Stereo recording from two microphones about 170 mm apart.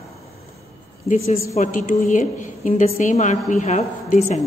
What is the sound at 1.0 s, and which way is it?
A woman's voice, 40° left (ahead or behind).